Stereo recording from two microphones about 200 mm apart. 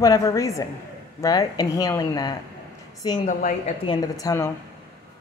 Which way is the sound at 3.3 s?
40° left (ahead or behind).